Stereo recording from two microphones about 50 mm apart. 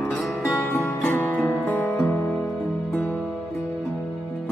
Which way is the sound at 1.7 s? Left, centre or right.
Left.